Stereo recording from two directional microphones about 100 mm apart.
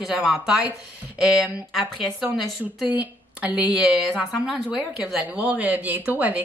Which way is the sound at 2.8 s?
15° right (ahead or behind).